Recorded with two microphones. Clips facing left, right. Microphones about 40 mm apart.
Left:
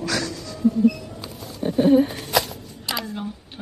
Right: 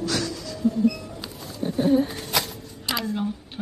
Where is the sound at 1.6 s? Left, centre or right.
Left.